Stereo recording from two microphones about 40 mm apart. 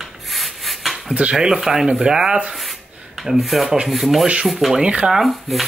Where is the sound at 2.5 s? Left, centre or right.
Centre.